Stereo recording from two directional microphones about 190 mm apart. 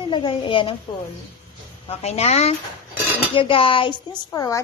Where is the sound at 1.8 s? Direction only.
35° left (ahead or behind).